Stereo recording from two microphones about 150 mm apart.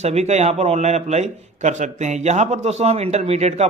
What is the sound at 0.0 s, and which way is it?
A man's voice, 50° right (ahead or behind).